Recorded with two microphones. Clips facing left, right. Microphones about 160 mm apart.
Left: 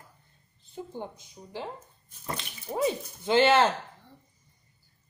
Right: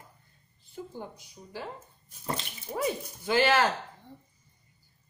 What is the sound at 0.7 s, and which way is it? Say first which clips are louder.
Speech: left 2 dB; 20° left (ahead or behind).